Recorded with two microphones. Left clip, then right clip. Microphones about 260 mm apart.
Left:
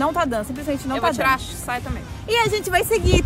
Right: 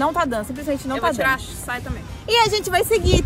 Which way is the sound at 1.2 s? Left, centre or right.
Centre.